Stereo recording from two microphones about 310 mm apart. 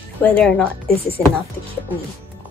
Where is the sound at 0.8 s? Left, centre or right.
Left.